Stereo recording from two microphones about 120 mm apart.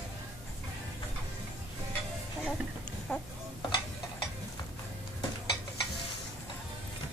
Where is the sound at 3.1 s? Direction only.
15° left (ahead or behind).